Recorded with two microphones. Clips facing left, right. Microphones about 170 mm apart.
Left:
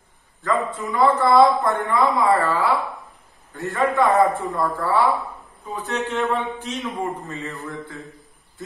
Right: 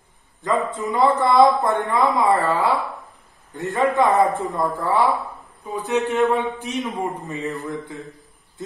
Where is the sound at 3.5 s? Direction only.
20° right (ahead or behind).